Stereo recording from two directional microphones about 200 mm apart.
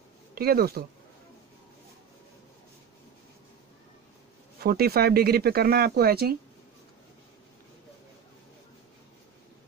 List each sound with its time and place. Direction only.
0.3 s speech: 50° right (ahead or behind)
4.6 s speech: 50° right (ahead or behind)